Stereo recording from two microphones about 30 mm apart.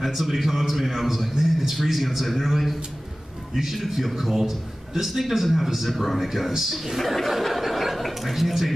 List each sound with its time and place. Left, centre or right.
0.0 s a man's voice: centre
7.2 s chuckle: centre